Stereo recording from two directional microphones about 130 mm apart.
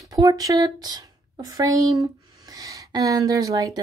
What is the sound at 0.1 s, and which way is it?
Speech, 30° right (ahead or behind).